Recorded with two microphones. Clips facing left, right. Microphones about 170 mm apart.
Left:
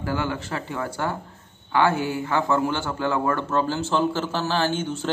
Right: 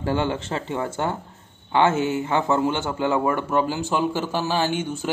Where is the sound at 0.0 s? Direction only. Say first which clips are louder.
Right 3 dB; 25° right (ahead or behind).